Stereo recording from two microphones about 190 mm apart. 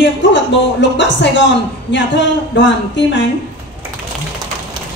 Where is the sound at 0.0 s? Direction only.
70° left (ahead or behind).